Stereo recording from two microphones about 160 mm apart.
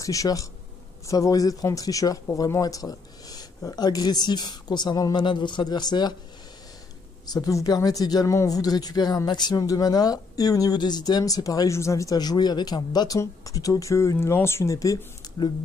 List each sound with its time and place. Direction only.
0.0 s speech: 20° left (ahead or behind)
7.2 s speech: 20° left (ahead or behind)